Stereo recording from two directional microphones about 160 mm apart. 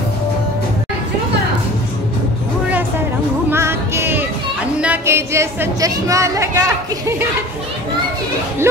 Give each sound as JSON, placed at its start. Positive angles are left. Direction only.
{"t": 3.4, "sound": "music", "side_deg": -15}
{"t": 4.7, "sound": "a woman's voice", "side_deg": -10}